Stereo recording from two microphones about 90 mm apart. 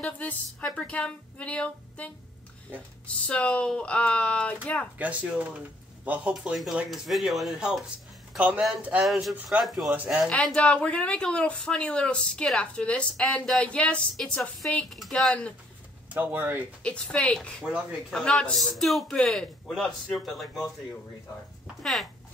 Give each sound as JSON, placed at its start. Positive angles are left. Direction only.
{"t": 0.0, "sound": "speech", "side_deg": 20}
{"t": 2.7, "sound": "speech", "side_deg": -20}
{"t": 3.3, "sound": "speech", "side_deg": 15}
{"t": 4.9, "sound": "speech", "side_deg": -15}
{"t": 6.5, "sound": "a man's voice", "side_deg": -5}
{"t": 9.0, "sound": "a man's voice", "side_deg": 0}
{"t": 9.8, "sound": "speech", "side_deg": -15}
{"t": 10.3, "sound": "a man's voice", "side_deg": 15}
{"t": 16.1, "sound": "speech", "side_deg": -20}
{"t": 16.8, "sound": "a man's voice", "side_deg": 10}